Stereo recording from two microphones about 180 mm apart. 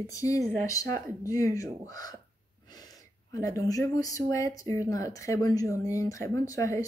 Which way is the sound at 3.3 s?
20° left (ahead or behind).